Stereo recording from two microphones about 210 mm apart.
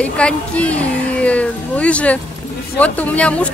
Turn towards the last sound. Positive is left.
turn(degrees=5)  # may be behind; listen again after turning